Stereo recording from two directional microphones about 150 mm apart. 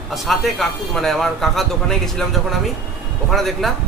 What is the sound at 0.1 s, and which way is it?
A man's voice, centre (ahead or behind).